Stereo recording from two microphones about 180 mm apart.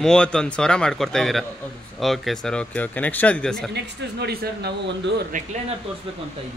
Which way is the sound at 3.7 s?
65° right (ahead or behind).